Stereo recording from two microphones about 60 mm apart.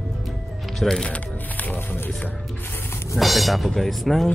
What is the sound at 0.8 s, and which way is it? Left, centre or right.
Speech, centre.